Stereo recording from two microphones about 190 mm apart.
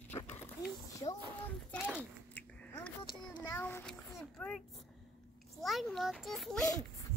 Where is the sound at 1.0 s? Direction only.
10° left (ahead or behind).